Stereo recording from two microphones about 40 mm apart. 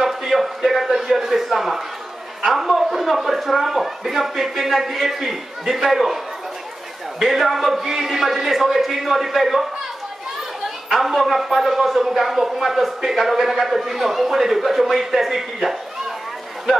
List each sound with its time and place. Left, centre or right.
0.0 s speech: centre
2.6 s a sound: centre
3.7 s a man's voice: centre
10.9 s speech: centre